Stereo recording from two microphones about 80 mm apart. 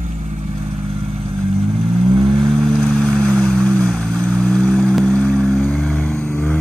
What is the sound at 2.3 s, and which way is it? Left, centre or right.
Vehicle, centre.